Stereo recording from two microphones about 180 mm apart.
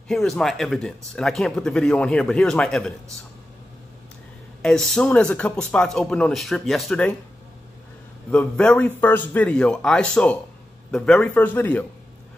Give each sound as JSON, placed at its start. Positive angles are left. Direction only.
{"t": 0.1, "sound": "speech", "side_deg": 0}
{"t": 4.6, "sound": "speech", "side_deg": 5}
{"t": 8.3, "sound": "a man's voice", "side_deg": 5}